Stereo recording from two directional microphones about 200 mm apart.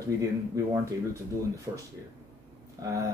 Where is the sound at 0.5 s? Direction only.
15° right (ahead or behind).